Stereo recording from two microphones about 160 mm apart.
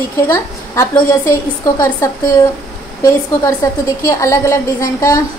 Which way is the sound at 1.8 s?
20° left (ahead or behind).